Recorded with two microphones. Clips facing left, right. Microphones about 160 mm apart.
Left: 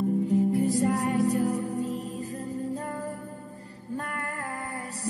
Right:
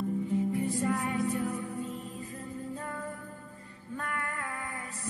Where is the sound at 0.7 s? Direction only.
40° left (ahead or behind).